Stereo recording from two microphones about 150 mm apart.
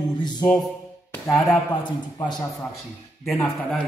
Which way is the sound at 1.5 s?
25° left (ahead or behind).